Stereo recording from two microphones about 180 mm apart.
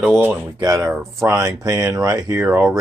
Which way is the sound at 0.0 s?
5° right (ahead or behind).